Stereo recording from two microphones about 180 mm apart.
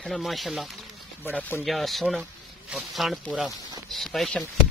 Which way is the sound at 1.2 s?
10° left (ahead or behind).